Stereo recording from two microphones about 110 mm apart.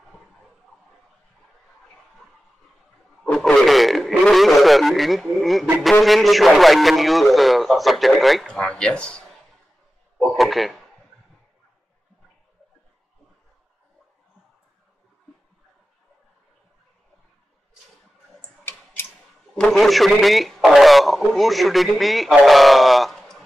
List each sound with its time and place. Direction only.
3.3 s a man's voice: 5° left (ahead or behind)
10.1 s a sound: 5° left (ahead or behind)
19.0 s scissors: 20° left (ahead or behind)
19.5 s a man's voice: 5° left (ahead or behind)